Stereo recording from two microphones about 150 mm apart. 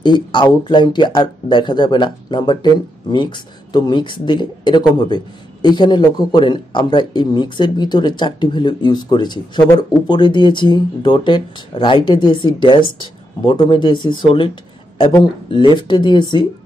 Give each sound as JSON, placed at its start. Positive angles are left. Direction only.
{"t": 0.0, "sound": "speech", "side_deg": 35}